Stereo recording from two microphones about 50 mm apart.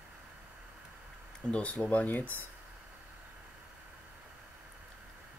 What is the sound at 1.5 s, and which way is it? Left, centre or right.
Speech, left.